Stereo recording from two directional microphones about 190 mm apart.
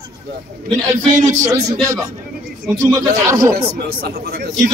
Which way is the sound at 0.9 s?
40° right (ahead or behind).